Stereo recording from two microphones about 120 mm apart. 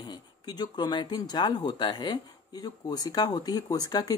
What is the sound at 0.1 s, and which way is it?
Speech, 35° left (ahead or behind).